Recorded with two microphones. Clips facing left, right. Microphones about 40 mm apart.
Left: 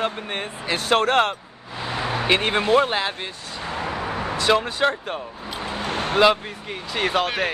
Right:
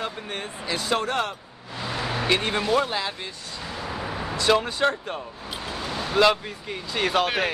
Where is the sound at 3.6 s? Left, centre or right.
Left.